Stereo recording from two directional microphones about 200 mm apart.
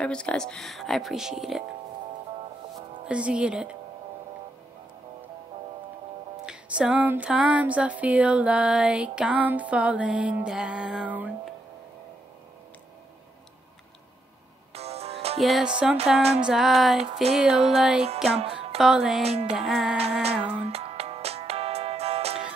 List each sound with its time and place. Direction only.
0.0 s speech: 5° left (ahead or behind)
3.1 s speech: 5° right (ahead or behind)
6.4 s music: 5° right (ahead or behind)
14.7 s music: 30° right (ahead or behind)
15.4 s speech: centre (ahead or behind)
16.2 s music: 30° right (ahead or behind)
16.4 s speech: centre (ahead or behind)
17.0 s music: 30° right (ahead or behind)
17.3 s speech: 5° right (ahead or behind)
19.2 s music: 30° right (ahead or behind)
19.5 s speech: centre (ahead or behind)
20.2 s music: 30° right (ahead or behind)